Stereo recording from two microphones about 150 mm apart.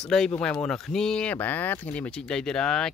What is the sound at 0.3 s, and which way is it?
Speech, 5° left (ahead or behind).